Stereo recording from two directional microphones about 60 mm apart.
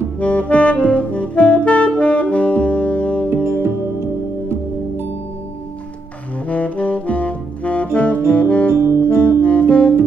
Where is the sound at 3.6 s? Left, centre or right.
Right.